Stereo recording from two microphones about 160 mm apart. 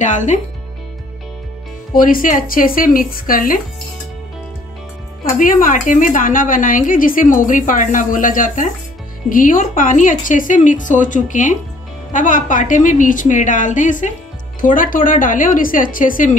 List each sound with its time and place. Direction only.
0.0 s speech: 50° left (ahead or behind)
2.0 s a woman's voice: 60° left (ahead or behind)
5.4 s a woman's voice: 60° left (ahead or behind)